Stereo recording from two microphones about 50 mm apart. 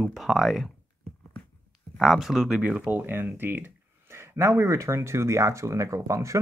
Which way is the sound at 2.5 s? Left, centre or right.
Right.